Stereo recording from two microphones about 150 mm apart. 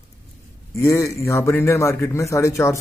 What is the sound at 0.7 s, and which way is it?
A man's voice, 20° left (ahead or behind).